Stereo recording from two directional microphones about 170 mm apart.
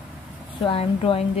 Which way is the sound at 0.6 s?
30° left (ahead or behind).